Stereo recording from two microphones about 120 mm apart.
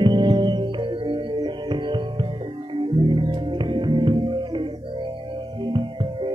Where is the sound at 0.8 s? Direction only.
50° right (ahead or behind).